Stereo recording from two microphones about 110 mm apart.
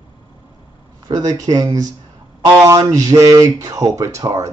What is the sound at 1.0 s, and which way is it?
Speech, 35° right (ahead or behind).